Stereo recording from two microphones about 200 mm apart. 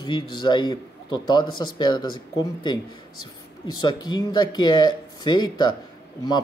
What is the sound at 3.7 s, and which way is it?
Speech, 20° left (ahead or behind).